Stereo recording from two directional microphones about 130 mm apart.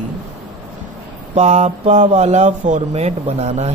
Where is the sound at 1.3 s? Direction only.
60° right (ahead or behind).